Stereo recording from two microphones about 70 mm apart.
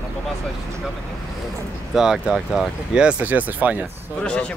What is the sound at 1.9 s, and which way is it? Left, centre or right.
Speech, centre.